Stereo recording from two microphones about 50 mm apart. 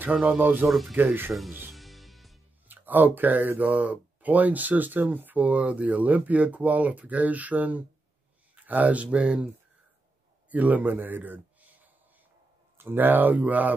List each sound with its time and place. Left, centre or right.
0.1 s speech: right
0.7 s speech: centre
0.9 s speech: right
1.7 s music: centre
2.7 s speech: right
10.5 s speech: right